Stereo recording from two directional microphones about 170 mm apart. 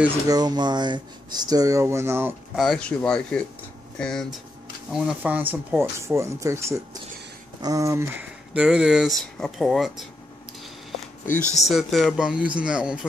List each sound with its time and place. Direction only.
0.3 s speech: 25° right (ahead or behind)
2.5 s speech: centre (ahead or behind)
11.5 s speech: centre (ahead or behind)